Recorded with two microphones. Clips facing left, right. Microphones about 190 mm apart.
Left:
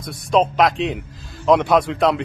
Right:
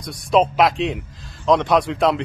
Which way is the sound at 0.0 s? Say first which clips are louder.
Right 1 dB; centre (ahead or behind).